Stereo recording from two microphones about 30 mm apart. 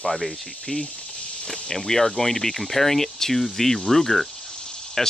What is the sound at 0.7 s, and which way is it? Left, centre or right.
Speech, left.